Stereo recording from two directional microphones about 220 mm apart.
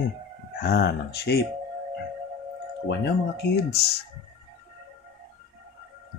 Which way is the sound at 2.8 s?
50° left (ahead or behind).